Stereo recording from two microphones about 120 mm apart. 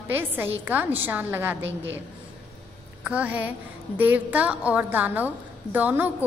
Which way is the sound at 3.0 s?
10° right (ahead or behind).